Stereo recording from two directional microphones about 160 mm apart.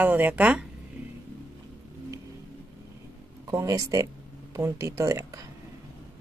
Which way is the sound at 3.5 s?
20° right (ahead or behind).